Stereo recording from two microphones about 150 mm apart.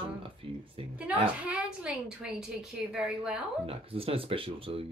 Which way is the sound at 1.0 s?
10° right (ahead or behind).